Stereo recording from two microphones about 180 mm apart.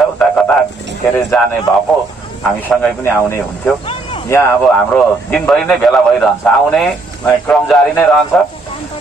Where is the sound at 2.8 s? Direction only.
10° left (ahead or behind).